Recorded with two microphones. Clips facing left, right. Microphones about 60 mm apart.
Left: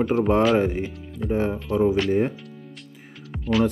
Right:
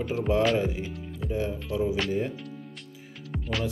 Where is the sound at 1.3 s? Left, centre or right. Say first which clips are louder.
Left 6 dB; left.